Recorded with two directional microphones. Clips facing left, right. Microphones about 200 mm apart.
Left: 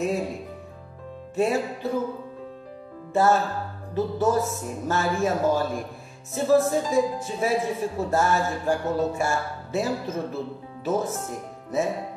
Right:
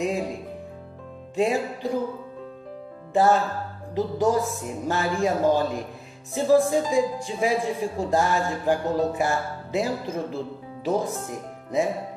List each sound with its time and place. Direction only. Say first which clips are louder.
1.3 s speech: even; 15° right (ahead or behind)
3.1 s speech: right 1 dB; 15° right (ahead or behind)